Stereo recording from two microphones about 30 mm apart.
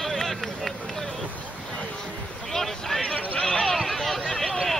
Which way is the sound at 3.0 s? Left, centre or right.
Left.